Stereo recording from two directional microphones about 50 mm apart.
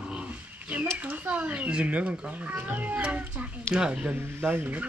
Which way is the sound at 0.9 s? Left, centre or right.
Right.